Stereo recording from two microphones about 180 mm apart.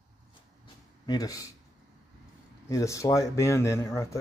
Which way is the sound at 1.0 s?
20° left (ahead or behind).